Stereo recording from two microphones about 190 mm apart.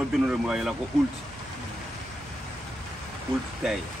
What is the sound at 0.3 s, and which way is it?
Speech, 5° right (ahead or behind).